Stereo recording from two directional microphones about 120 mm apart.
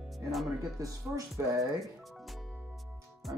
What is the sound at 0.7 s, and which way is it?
Speech, 30° right (ahead or behind).